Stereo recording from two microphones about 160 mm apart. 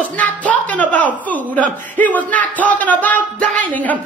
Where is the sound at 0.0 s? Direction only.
10° left (ahead or behind).